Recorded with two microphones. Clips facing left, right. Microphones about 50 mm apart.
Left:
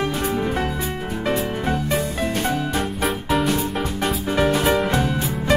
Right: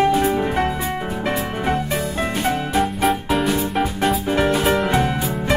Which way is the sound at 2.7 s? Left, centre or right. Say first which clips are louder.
Right 4 dB; centre.